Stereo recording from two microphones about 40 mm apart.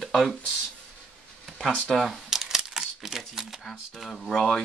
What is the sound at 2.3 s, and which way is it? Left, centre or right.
Crumpling, centre.